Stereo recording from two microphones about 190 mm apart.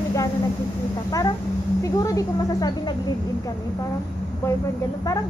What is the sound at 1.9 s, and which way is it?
Speech, 20° left (ahead or behind).